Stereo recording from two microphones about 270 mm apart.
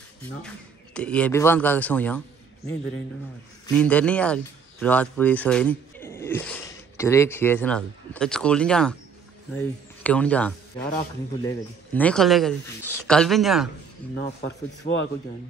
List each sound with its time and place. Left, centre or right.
0.9 s speech: centre
14.8 s speech: left